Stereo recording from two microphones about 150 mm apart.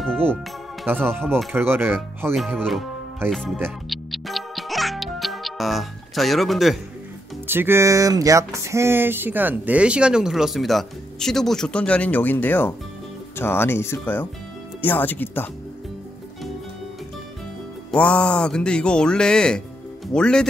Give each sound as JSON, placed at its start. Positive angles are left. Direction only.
{"t": 0.9, "sound": "speech", "side_deg": -15}
{"t": 2.3, "sound": "speech", "side_deg": 0}
{"t": 3.9, "sound": "music", "side_deg": 0}
{"t": 7.4, "sound": "music", "side_deg": -15}
{"t": 8.5, "sound": "speech", "side_deg": -20}
{"t": 17.9, "sound": "speech", "side_deg": 10}